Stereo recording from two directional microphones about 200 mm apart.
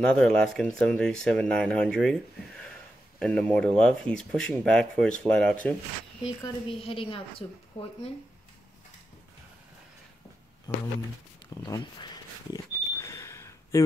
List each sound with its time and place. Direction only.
0.0 s speech: 5° left (ahead or behind)
3.2 s speech: 5° left (ahead or behind)
6.4 s a woman's voice: 25° left (ahead or behind)
10.7 s a woman's voice: 20° left (ahead or behind)
13.0 s camera: 15° left (ahead or behind)